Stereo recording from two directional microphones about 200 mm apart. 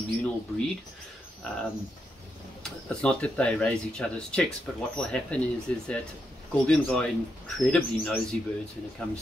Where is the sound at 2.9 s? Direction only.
5° left (ahead or behind).